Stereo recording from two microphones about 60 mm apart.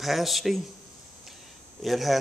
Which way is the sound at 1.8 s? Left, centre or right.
Centre.